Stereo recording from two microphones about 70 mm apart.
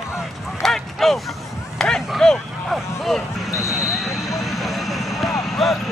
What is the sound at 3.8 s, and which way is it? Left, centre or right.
Vehicle, centre.